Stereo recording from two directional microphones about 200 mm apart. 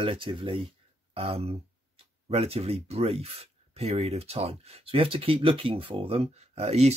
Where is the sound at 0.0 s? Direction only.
25° right (ahead or behind).